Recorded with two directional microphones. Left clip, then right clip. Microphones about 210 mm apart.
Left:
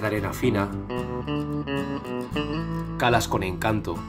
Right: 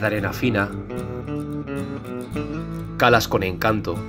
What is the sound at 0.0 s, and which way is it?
Speech, 20° right (ahead or behind).